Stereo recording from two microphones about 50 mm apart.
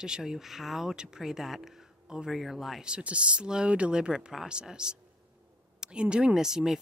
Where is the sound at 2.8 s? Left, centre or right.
Right.